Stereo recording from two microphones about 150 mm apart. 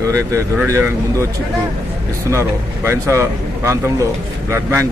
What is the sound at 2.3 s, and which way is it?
Speech, 20° right (ahead or behind).